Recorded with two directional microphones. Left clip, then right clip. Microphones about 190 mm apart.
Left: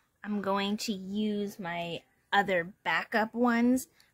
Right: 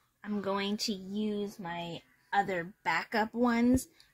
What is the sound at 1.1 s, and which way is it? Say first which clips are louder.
Speech: left 2 dB; 50° left (ahead or behind).